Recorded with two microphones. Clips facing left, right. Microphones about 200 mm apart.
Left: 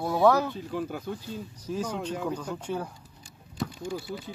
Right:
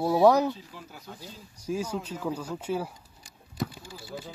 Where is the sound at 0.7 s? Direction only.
55° left (ahead or behind).